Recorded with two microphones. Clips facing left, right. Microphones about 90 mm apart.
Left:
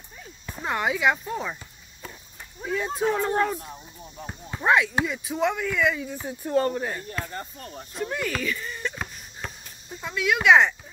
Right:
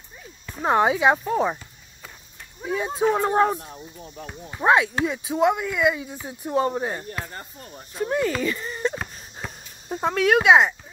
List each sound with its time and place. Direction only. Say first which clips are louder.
0.6 s speech: right 7 dB; 30° right (ahead or behind)
1.2 s speech: right 8 dB; 45° right (ahead or behind)
2.6 s speech: right 3 dB; 20° right (ahead or behind)
3.2 s speech: right 4 dB; 35° right (ahead or behind)
4.6 s speech: right 2 dB; 20° right (ahead or behind)
6.8 s speech: right 2 dB; 30° right (ahead or behind)
8.9 s wheeze: right 3 dB; 5° right (ahead or behind)
9.8 s speech: right 6 dB; 50° right (ahead or behind)
10.4 s speech: even; 15° right (ahead or behind)